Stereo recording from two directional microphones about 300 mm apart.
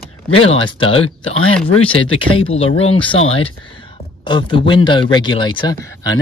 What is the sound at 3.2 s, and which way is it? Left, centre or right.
Speech, left.